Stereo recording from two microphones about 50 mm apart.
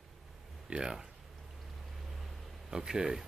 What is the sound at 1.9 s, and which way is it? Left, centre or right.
Vehicle, centre.